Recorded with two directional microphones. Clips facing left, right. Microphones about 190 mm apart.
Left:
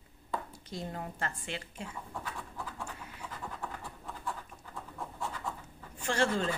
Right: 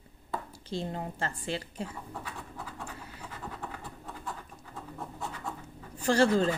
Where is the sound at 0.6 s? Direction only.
30° right (ahead or behind).